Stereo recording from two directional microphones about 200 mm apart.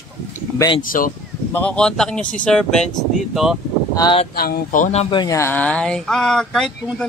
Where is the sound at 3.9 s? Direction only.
25° left (ahead or behind).